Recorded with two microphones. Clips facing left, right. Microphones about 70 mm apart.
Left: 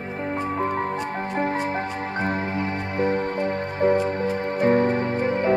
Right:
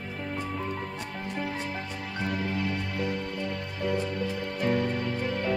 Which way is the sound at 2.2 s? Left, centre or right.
Left.